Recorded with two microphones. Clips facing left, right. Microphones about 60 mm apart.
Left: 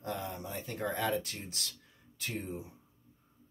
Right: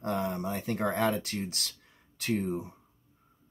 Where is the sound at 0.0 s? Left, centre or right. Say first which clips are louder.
Right 7 dB; right.